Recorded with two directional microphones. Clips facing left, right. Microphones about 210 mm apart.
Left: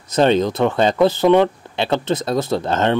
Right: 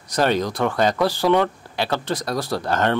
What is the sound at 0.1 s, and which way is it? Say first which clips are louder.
Speech: left 5 dB; 25° left (ahead or behind).